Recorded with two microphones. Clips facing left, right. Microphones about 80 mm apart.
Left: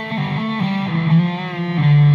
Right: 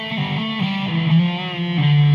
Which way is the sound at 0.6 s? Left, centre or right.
Left.